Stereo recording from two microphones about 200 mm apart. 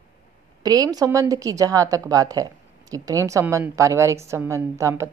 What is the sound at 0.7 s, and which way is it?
Speech, 20° right (ahead or behind).